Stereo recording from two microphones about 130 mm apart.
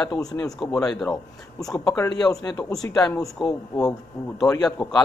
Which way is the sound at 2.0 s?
30° left (ahead or behind).